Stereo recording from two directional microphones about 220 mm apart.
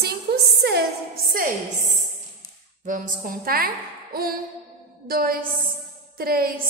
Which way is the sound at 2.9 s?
40° right (ahead or behind).